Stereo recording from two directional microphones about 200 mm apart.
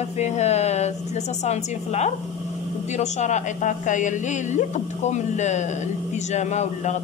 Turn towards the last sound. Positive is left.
turn(degrees=35)  # may be behind; listen again after turning